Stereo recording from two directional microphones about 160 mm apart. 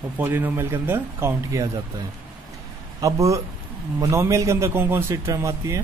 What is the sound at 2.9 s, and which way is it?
Speech, 20° right (ahead or behind).